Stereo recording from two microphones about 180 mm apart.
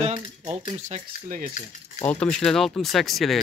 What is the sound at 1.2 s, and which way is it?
Speech, 50° right (ahead or behind).